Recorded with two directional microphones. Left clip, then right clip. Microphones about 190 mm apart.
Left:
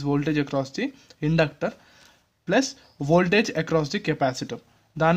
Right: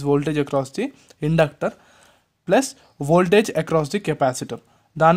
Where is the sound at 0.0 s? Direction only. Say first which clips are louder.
Right 5 dB; 30° right (ahead or behind).